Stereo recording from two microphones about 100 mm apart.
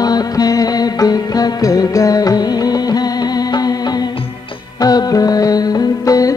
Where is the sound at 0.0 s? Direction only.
40° left (ahead or behind).